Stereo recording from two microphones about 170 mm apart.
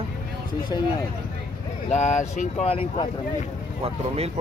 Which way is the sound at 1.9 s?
45° left (ahead or behind).